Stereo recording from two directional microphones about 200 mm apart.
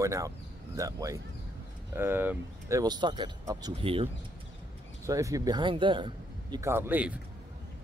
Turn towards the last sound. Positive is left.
turn(degrees=-10)  # may be behind; listen again after turning